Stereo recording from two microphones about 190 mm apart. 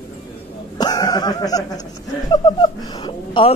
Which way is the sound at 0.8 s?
20° left (ahead or behind).